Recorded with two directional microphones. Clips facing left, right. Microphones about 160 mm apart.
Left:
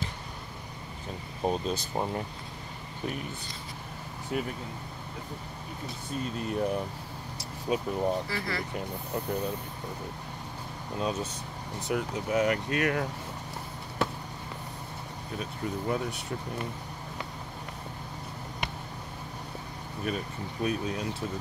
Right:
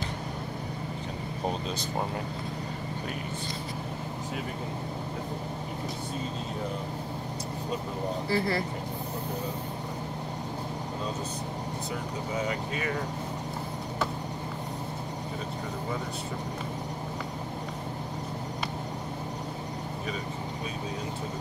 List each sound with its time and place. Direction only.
8.3 s speech: 30° right (ahead or behind)
11.9 s speech: 75° left (ahead or behind)